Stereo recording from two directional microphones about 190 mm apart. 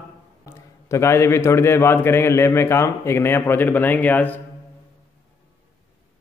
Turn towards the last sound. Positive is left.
turn(degrees=10)  # may be behind; listen again after turning